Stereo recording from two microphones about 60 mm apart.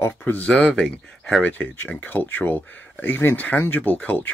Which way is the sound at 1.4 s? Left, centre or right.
Left.